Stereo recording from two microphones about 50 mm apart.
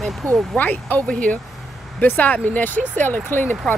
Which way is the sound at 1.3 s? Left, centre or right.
Centre.